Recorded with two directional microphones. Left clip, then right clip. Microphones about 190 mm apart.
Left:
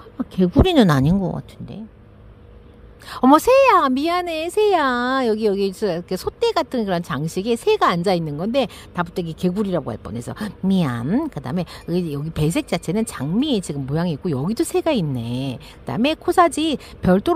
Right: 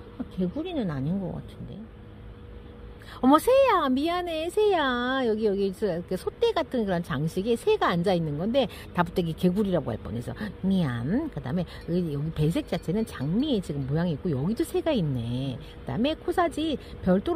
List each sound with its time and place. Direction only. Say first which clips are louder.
0.4 s speech: left 15 dB; 65° left (ahead or behind)
0.8 s speech: left 13 dB; 45° left (ahead or behind)
3.1 s a woman's voice: left 7 dB; 30° left (ahead or behind)